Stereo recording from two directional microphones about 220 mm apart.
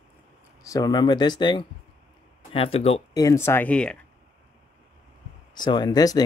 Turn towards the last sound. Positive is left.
turn(degrees=15)  # may be behind; listen again after turning